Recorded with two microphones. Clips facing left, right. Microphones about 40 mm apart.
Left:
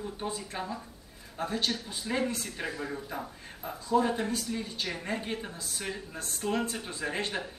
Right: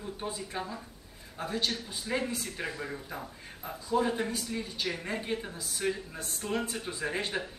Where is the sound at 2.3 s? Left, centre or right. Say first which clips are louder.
Left 1 dB; centre.